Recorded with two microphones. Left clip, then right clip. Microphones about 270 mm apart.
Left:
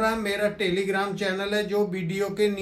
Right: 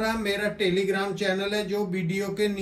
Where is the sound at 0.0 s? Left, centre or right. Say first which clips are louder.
Left 2 dB; centre.